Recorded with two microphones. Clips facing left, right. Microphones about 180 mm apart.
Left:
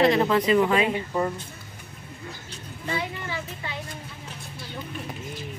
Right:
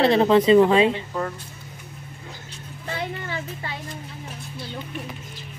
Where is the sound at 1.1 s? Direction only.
10° left (ahead or behind).